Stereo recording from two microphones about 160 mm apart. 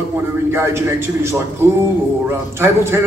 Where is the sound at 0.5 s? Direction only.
15° right (ahead or behind).